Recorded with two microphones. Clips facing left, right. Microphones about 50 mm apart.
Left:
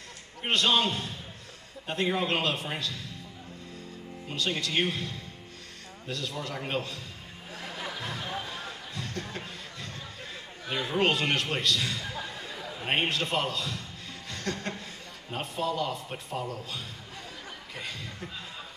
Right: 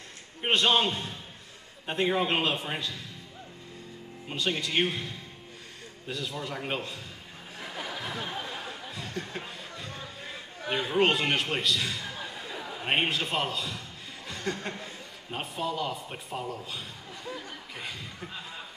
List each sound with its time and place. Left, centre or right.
0.4 s a man's voice: right
4.3 s a man's voice: centre
7.9 s a sound: centre
10.7 s a man's voice: centre
14.3 s chuckle: centre
15.3 s a man's voice: centre